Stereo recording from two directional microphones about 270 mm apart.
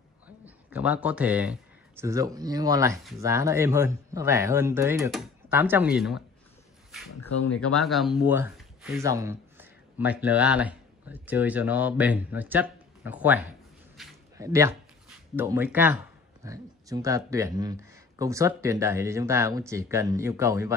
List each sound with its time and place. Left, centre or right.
0.7 s speech: centre
7.2 s speech: left
7.7 s speech: centre
14.0 s a sound: centre
14.3 s speech: centre